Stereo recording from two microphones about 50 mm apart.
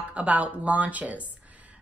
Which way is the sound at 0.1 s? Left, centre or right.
Right.